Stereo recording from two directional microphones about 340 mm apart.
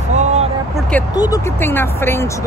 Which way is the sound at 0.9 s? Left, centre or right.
Centre.